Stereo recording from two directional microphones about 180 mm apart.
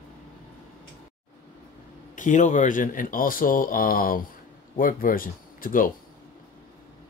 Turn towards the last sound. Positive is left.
turn(degrees=50)  # may be behind; listen again after turning